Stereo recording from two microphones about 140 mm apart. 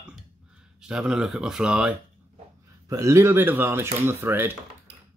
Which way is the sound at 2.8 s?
25° right (ahead or behind).